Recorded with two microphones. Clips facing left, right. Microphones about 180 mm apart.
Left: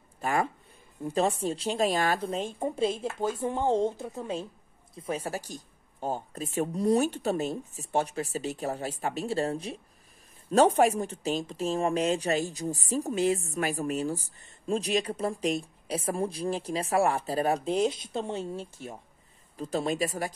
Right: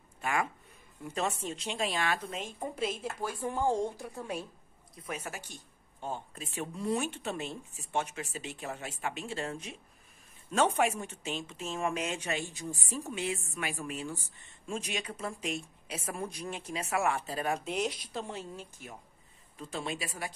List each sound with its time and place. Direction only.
0.2 s speech: 35° left (ahead or behind)